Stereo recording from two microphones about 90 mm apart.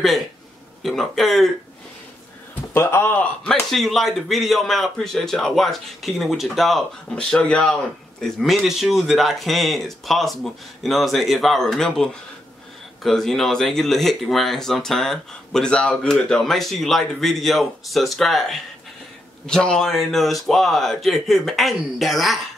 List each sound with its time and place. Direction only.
0.8 s speech: 5° left (ahead or behind)
2.7 s a man's voice: 25° left (ahead or behind)
3.7 s speech: centre (ahead or behind)